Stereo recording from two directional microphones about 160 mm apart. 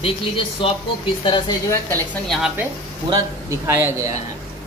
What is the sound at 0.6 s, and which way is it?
Speech, 35° left (ahead or behind).